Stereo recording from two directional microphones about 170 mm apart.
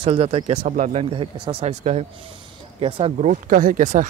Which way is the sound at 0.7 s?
50° right (ahead or behind).